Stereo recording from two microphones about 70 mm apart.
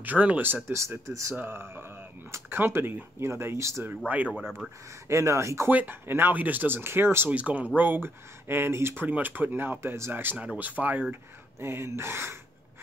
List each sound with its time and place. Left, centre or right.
0.0 s speech: right
0.7 s speech: right
1.4 s speech: right
5.0 s speech: right
5.7 s speech: right
7.2 s speech: right
9.0 s speech: right
10.4 s speech: right
11.6 s speech: right